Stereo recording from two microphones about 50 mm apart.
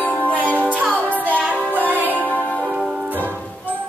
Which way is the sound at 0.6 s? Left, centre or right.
Right.